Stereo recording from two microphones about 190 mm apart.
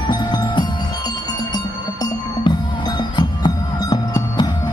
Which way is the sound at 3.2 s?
25° left (ahead or behind).